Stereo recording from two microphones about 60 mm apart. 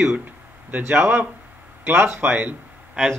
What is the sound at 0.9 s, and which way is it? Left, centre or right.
Speech, right.